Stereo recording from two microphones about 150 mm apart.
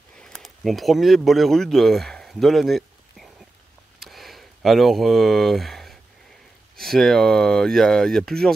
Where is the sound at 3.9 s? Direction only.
Centre (ahead or behind).